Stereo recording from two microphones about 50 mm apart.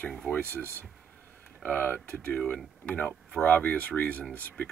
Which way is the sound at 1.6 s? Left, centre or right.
Left.